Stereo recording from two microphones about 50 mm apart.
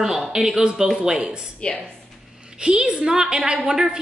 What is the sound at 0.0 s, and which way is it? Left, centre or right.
Speech, centre.